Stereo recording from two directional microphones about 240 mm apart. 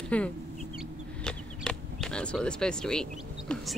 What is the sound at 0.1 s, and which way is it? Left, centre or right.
Speech, centre.